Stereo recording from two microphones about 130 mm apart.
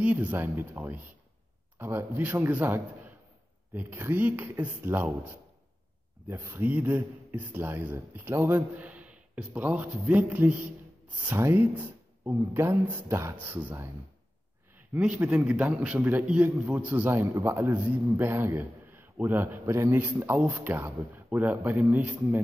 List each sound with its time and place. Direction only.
0.0 s a man's voice: 10° right (ahead or behind)
15.0 s a man's voice: 10° right (ahead or behind)